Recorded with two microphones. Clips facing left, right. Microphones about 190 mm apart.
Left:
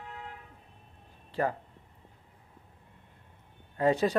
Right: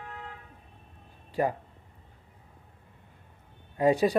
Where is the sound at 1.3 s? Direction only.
15° right (ahead or behind).